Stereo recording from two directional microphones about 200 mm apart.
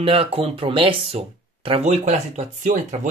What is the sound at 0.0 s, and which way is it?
Speech, 30° right (ahead or behind).